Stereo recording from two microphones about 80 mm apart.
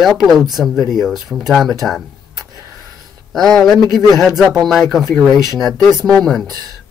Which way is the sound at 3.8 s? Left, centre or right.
Right.